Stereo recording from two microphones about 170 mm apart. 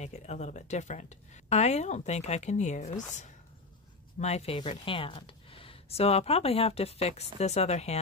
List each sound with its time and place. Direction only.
0.0 s a woman's voice: 40° left (ahead or behind)
4.2 s a woman's voice: 40° left (ahead or behind)